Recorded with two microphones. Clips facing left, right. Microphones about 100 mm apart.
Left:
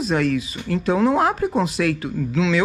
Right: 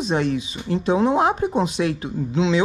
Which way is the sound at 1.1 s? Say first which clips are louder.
Even; centre (ahead or behind).